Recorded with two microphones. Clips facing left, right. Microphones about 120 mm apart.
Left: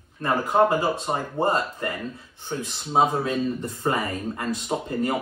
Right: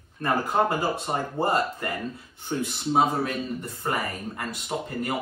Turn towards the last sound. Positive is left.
turn(degrees=25)  # may be behind; listen again after turning